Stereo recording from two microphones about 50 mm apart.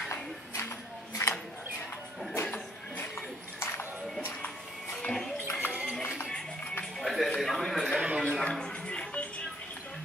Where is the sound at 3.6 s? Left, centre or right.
Left.